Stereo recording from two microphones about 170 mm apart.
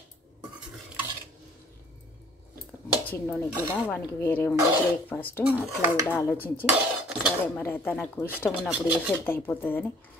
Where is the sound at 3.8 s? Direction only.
10° left (ahead or behind).